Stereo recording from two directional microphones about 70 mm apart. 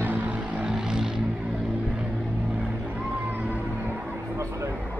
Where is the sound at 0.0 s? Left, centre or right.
Right; by 1.2 s centre.